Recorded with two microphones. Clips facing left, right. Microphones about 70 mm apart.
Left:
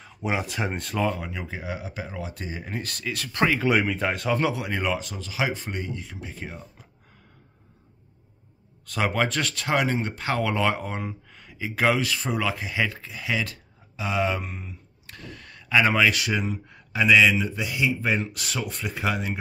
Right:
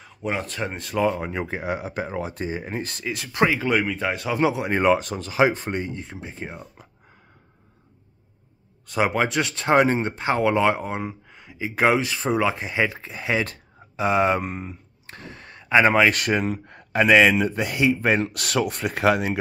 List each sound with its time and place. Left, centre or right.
0.0 s speech: centre
1.2 s speech: right; by 3.6 s centre
3.6 s speech: centre
4.4 s speech: centre
4.6 s speech: right
8.8 s speech: centre
9.7 s speech: right